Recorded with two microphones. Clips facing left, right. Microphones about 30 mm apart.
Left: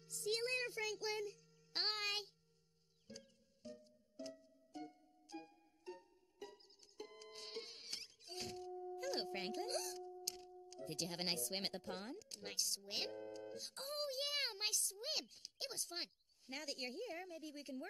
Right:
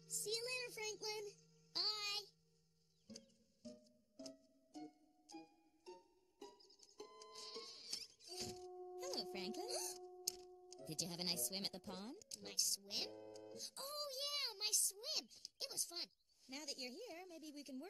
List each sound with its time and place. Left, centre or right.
0.1 s music: centre
0.4 s child singing: left
3.2 s music: left
11.5 s speech: left
12.6 s music: left
15.0 s speech: left